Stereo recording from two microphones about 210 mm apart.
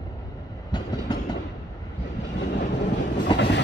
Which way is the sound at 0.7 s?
20° left (ahead or behind).